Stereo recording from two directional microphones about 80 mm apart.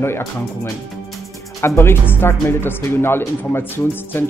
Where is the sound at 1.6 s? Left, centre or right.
Left.